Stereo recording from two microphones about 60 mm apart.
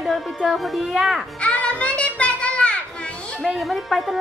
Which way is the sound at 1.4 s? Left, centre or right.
Centre.